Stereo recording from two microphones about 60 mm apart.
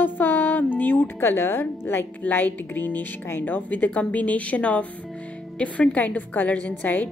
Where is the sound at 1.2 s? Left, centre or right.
Left.